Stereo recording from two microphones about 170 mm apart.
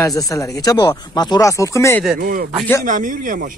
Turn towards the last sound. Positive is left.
turn(degrees=-50)  # may be behind; listen again after turning